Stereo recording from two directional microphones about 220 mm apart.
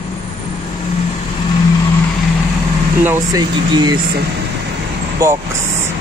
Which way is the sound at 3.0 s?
15° right (ahead or behind).